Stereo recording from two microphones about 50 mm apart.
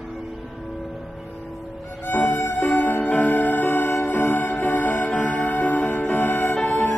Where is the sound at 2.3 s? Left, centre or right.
Left.